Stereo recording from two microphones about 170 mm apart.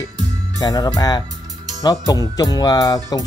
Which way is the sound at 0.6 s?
20° left (ahead or behind).